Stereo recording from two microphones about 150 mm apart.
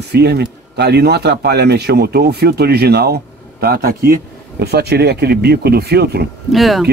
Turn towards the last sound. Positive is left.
turn(degrees=0)  # may be behind; listen again after turning